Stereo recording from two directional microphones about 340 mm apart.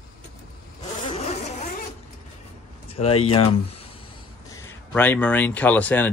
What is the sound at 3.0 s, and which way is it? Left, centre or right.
Speech, centre.